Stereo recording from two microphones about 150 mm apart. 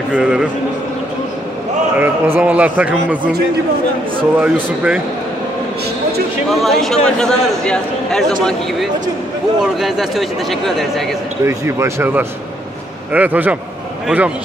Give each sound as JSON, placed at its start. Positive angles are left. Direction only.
{"t": 0.1, "sound": "a man's voice", "side_deg": -5}
{"t": 2.0, "sound": "speech", "side_deg": -15}
{"t": 4.4, "sound": "speech", "side_deg": -10}
{"t": 6.5, "sound": "a man's voice", "side_deg": 0}
{"t": 11.4, "sound": "speech", "side_deg": -20}